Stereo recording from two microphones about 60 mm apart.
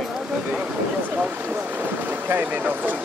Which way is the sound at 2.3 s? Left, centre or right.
Right.